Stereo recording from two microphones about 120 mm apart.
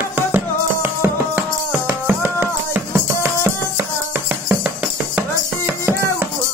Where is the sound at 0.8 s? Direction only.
20° right (ahead or behind).